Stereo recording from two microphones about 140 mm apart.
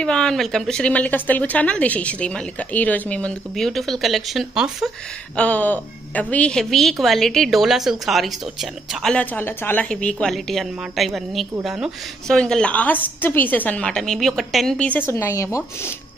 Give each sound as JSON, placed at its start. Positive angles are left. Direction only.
{"t": 0.0, "sound": "a woman's voice", "side_deg": 5}
{"t": 5.3, "sound": "a woman's voice", "side_deg": 10}
{"t": 15.0, "sound": "speech", "side_deg": 20}